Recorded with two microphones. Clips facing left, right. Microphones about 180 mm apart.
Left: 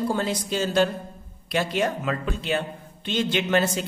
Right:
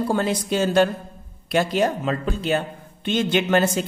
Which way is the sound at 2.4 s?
45° right (ahead or behind).